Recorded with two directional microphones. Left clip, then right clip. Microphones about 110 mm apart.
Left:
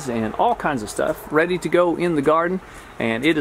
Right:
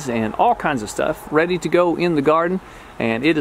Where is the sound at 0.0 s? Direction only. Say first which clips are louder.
Right 3 dB; 15° right (ahead or behind).